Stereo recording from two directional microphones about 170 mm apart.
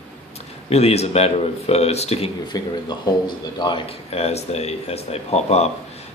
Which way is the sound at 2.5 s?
25° left (ahead or behind).